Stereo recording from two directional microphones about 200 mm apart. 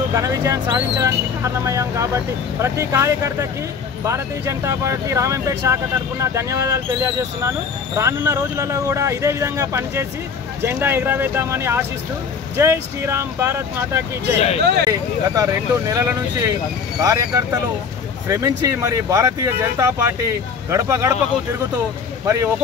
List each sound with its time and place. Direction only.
0.1 s speech: 15° right (ahead or behind)
14.6 s speech: 55° right (ahead or behind)
14.9 s speech: 15° right (ahead or behind)
22.2 s speech: 15° right (ahead or behind)